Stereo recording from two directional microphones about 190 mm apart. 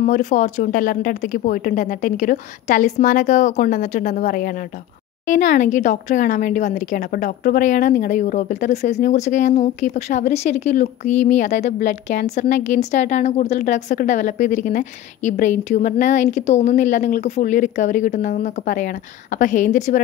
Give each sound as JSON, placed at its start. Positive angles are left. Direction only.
{"t": 0.0, "sound": "speech", "side_deg": 40}